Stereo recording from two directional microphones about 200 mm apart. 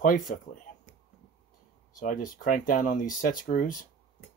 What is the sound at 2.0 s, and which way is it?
Speech, 40° left (ahead or behind).